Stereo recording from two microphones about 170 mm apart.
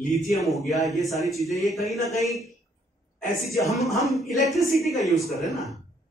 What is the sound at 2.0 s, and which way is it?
Speech, 20° right (ahead or behind).